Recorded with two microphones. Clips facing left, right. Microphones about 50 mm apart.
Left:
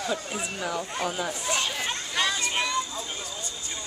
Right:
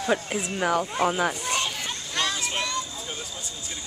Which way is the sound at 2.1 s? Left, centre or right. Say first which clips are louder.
Even; centre.